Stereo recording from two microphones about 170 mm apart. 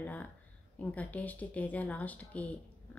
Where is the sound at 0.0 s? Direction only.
10° left (ahead or behind).